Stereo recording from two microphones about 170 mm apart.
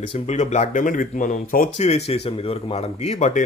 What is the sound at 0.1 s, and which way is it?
Speech, 45° left (ahead or behind).